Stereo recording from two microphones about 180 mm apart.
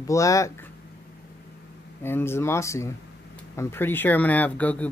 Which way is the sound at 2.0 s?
15° left (ahead or behind).